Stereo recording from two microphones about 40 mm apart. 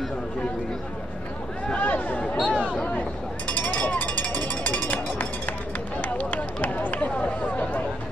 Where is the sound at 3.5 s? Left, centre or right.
Left.